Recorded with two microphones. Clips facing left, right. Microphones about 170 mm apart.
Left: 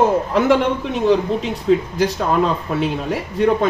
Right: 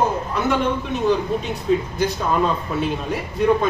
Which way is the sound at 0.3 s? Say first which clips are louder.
Left 7 dB; 90° left.